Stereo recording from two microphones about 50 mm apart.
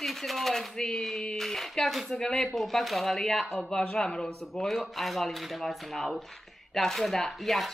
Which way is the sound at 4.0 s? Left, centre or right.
Centre.